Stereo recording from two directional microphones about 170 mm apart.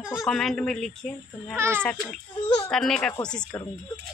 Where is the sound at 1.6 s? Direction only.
15° right (ahead or behind).